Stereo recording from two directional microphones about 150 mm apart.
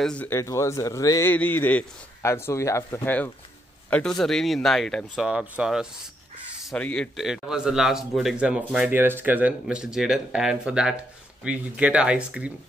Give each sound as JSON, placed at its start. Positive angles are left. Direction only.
{"t": 0.0, "sound": "speech", "side_deg": 10}
{"t": 1.3, "sound": "a man's voice", "side_deg": 10}
{"t": 3.9, "sound": "speech", "side_deg": 5}
{"t": 6.6, "sound": "speech", "side_deg": 5}